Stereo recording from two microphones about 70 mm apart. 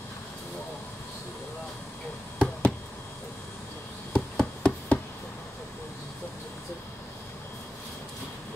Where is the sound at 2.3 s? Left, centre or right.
Centre.